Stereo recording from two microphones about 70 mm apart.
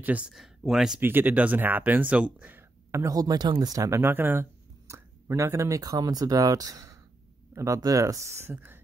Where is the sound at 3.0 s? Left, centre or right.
Right.